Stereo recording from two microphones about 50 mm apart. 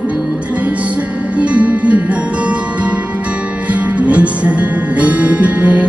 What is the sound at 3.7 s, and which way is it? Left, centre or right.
Music, right.